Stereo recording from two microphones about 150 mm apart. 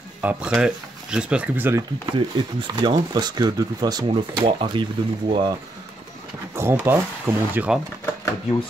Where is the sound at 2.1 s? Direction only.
30° right (ahead or behind).